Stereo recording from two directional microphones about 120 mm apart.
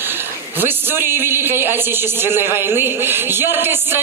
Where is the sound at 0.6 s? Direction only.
20° right (ahead or behind).